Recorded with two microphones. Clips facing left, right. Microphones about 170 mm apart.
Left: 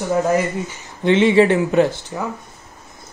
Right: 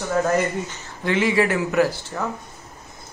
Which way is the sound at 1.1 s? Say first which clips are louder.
Left 7 dB; 25° left (ahead or behind).